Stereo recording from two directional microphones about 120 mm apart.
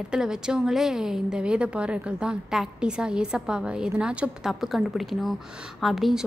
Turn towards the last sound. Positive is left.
turn(degrees=0)  # may be behind; listen again after turning